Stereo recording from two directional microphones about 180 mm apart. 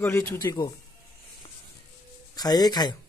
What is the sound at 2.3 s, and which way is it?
Speech, 20° left (ahead or behind).